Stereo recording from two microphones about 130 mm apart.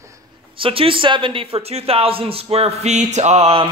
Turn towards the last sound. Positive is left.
turn(degrees=-50)  # may be behind; listen again after turning